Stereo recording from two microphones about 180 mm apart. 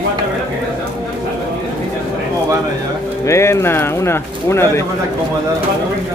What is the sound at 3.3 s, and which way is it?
A man's voice, 15° left (ahead or behind).